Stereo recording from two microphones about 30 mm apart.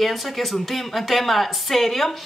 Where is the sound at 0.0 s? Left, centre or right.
Centre.